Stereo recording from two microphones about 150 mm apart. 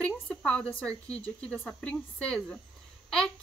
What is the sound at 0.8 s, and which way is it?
A woman's voice, 5° left (ahead or behind).